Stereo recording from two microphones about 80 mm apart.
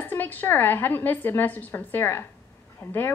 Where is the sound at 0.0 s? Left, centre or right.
Left.